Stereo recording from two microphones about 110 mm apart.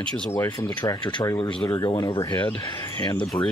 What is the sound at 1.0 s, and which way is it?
Speech, 45° left (ahead or behind).